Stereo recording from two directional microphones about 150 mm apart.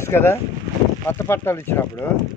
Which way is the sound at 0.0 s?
15° left (ahead or behind).